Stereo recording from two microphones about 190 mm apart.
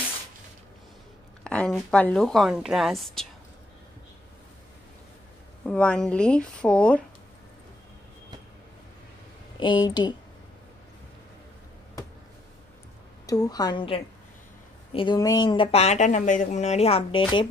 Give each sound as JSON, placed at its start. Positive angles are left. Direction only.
{"t": 1.4, "sound": "a woman's voice", "side_deg": 5}
{"t": 5.7, "sound": "a woman's voice", "side_deg": 5}
{"t": 9.6, "sound": "a woman's voice", "side_deg": 25}
{"t": 13.3, "sound": "a woman's voice", "side_deg": 20}